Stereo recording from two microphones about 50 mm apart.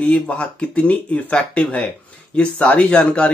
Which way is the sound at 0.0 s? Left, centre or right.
Left.